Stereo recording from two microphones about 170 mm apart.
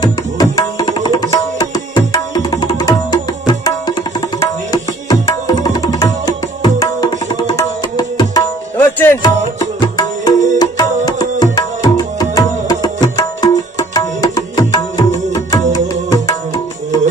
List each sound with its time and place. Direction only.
0.0 s tabla: 20° left (ahead or behind)
8.7 s music: 10° left (ahead or behind)
9.6 s music: 25° left (ahead or behind)